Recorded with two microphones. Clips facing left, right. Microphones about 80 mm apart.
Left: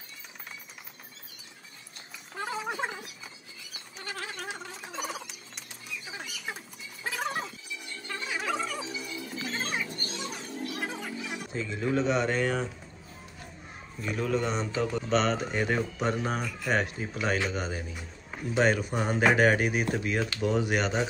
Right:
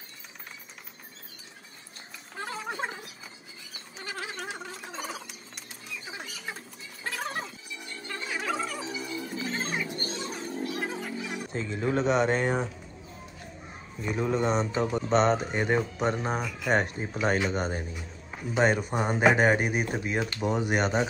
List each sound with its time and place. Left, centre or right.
2.3 s a sound: centre
4.0 s a sound: centre
6.4 s a sound: centre
8.1 s music: centre
8.8 s music: right
9.6 s music: centre
9.9 s music: right
10.8 s music: centre
11.5 s speech: right
12.0 s speech: right
14.0 s speech: right
15.3 s speech: right
16.7 s speech: right
18.9 s speech: centre